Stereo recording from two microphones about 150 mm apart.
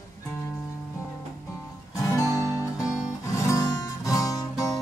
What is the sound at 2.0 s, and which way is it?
Music, 20° left (ahead or behind).